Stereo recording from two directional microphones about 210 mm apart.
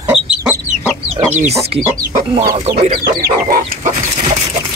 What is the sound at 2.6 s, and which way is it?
Chicken, 40° right (ahead or behind).